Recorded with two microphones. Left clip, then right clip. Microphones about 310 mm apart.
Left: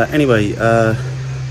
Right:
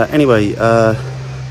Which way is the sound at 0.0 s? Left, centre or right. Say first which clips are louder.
Right 2 dB; centre.